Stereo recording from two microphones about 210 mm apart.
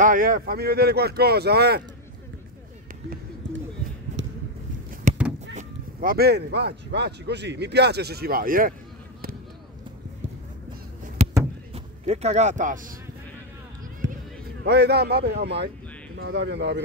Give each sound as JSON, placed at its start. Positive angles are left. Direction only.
{"t": 0.0, "sound": "speech", "side_deg": -40}
{"t": 4.2, "sound": "a sound", "side_deg": -60}
{"t": 5.6, "sound": "speech", "side_deg": -45}
{"t": 11.2, "sound": "a sound", "side_deg": -35}
{"t": 11.7, "sound": "speech", "side_deg": -30}
{"t": 14.0, "sound": "basketball bounce", "side_deg": -65}
{"t": 14.6, "sound": "a man's voice", "side_deg": -50}